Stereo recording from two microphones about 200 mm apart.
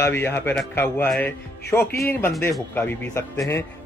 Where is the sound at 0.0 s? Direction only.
10° left (ahead or behind).